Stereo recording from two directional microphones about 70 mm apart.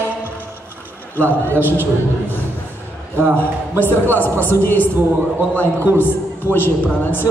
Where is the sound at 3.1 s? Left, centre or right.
Right.